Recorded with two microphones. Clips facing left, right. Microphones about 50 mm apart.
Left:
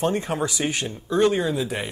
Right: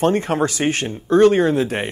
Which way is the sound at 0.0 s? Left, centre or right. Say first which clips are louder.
Right 6 dB; right.